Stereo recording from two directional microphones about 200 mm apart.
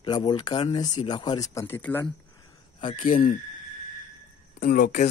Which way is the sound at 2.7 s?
25° left (ahead or behind).